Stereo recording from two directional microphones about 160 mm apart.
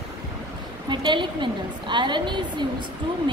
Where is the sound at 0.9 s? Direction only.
30° right (ahead or behind).